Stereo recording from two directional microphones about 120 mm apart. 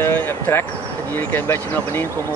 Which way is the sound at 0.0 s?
20° left (ahead or behind).